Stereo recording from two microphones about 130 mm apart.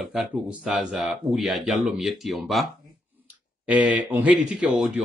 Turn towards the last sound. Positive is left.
turn(degrees=-5)  # may be behind; listen again after turning